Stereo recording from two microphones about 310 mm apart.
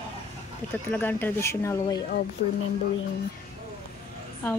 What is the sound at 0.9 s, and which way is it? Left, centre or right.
Speech, centre.